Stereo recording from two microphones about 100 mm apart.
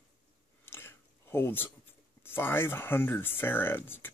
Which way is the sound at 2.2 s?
20° left (ahead or behind).